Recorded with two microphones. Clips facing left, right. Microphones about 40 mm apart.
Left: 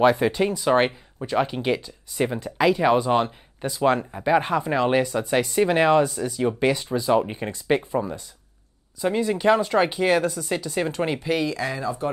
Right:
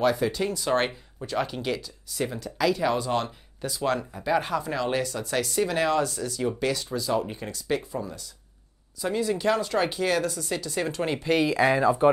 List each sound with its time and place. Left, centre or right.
0.0 s speech: left
9.0 s speech: left
11.4 s speech: right